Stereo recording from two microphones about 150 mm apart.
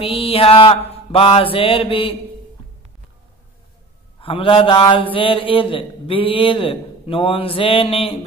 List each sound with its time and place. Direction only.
0.0 s a man's voice: 40° left (ahead or behind)
4.2 s a man's voice: 35° left (ahead or behind)